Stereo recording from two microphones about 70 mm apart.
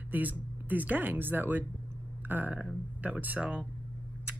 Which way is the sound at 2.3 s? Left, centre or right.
Right.